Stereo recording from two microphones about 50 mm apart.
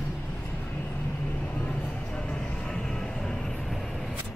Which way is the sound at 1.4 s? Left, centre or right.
Left.